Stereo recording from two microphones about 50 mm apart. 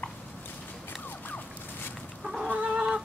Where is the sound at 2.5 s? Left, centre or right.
Right.